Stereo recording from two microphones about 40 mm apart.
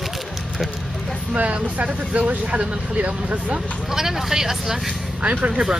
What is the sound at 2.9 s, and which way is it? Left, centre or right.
Speech, right.